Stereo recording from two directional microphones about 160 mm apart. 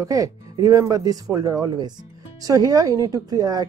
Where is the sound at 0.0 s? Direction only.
20° right (ahead or behind).